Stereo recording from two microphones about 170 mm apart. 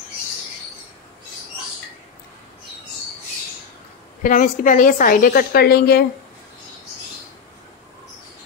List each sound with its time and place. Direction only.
4.2 s a woman's voice: 50° left (ahead or behind); by 6.0 s 65° left (ahead or behind)